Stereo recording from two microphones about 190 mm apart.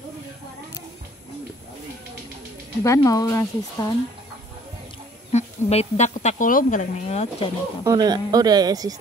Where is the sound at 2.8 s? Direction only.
15° left (ahead or behind).